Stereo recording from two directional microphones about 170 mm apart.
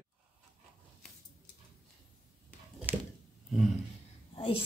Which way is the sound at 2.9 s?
10° right (ahead or behind).